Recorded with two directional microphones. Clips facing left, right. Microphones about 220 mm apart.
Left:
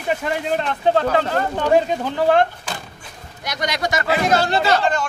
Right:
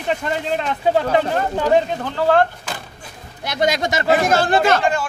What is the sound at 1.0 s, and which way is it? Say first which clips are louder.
Speech: right 1 dB; 15° right (ahead or behind).